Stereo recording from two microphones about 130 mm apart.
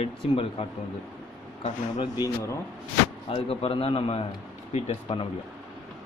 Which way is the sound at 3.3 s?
45° left (ahead or behind).